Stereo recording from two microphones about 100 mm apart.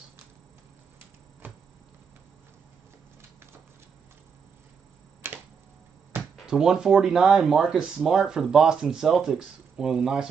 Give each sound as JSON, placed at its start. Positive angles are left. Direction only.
{"t": 1.4, "sound": "a sound", "side_deg": -20}
{"t": 5.2, "sound": "tick-tock", "side_deg": -25}
{"t": 6.3, "sound": "speech", "side_deg": -5}